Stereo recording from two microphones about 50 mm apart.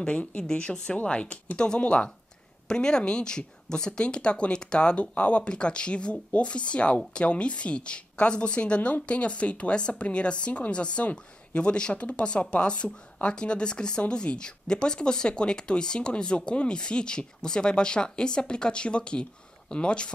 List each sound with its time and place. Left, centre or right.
0.0 s a woman's voice: left